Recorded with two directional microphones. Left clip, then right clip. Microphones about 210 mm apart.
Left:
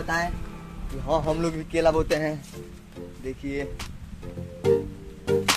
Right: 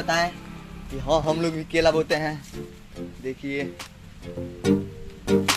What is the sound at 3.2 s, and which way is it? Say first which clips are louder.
Speech: right 2 dB; 20° right (ahead or behind).